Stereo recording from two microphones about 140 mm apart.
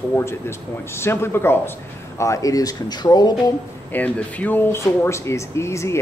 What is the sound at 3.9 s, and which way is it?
Speech, 10° left (ahead or behind).